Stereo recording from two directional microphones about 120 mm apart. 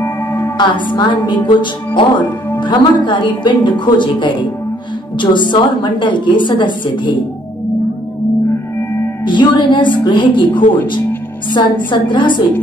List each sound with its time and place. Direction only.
0.0 s singing bowl: 15° left (ahead or behind)
0.6 s a woman's voice: 40° left (ahead or behind)
8.7 s singing bowl: 20° left (ahead or behind)
9.2 s a woman's voice: 40° left (ahead or behind)